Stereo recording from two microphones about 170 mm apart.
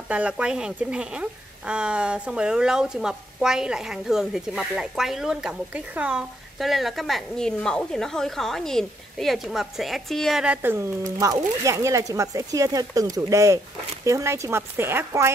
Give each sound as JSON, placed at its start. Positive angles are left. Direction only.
{"t": 0.1, "sound": "speech", "side_deg": -5}